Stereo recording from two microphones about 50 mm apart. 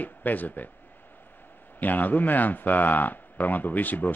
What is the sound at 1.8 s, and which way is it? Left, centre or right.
A man's voice, left.